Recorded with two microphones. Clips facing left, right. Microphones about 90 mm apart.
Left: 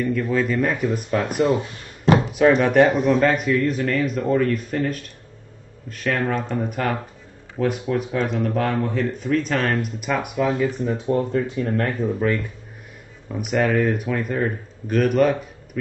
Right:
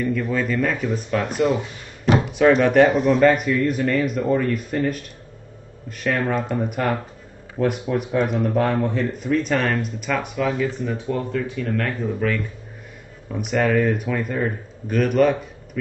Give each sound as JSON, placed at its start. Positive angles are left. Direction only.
{"t": 0.0, "sound": "speech", "side_deg": 0}
{"t": 2.3, "sound": "speech", "side_deg": 5}
{"t": 10.6, "sound": "speech", "side_deg": 25}
{"t": 13.3, "sound": "speech", "side_deg": 5}